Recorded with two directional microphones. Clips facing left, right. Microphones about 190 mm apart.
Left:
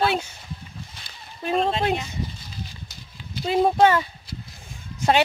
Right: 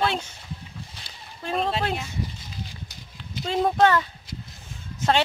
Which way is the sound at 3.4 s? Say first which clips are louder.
Left 3 dB; 10° left (ahead or behind).